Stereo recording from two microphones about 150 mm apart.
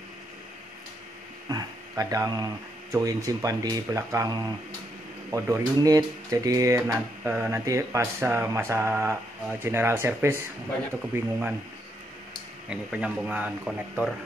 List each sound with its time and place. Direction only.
1.5 s speech: 25° right (ahead or behind)
12.6 s speech: 5° right (ahead or behind)